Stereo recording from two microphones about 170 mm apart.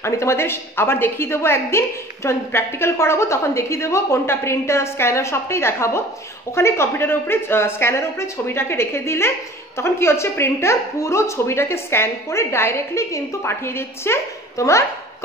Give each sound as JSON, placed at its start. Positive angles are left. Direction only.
{"t": 0.0, "sound": "a woman's voice", "side_deg": 15}